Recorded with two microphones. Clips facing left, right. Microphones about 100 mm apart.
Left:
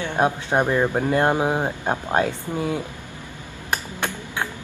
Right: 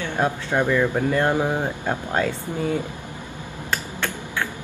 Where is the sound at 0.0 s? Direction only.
20° left (ahead or behind).